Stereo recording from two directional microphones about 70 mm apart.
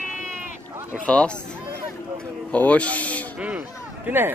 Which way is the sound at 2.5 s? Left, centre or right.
Centre.